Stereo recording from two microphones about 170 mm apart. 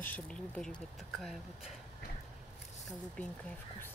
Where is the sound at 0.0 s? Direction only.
10° left (ahead or behind).